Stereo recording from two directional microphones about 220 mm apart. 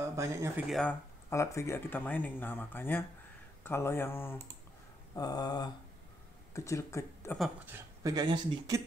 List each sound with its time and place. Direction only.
0.0 s speech: 15° right (ahead or behind)
0.7 s speech: centre (ahead or behind)
1.3 s speech: 15° left (ahead or behind)
7.3 s speech: 5° right (ahead or behind)